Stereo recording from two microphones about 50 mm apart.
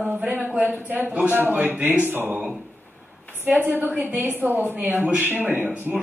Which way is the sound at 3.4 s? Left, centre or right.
Right.